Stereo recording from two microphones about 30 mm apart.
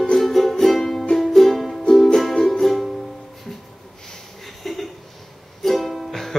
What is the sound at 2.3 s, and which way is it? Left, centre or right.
Music, centre.